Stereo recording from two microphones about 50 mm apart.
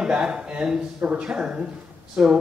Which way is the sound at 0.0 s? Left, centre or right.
Centre.